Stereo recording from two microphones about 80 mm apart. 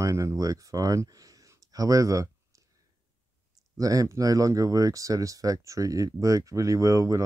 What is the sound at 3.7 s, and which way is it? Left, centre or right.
Speech, right.